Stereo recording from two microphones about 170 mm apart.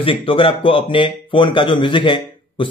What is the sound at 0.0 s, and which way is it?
Speech, 30° left (ahead or behind).